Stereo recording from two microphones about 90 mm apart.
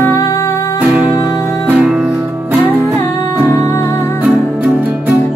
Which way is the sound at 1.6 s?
15° right (ahead or behind).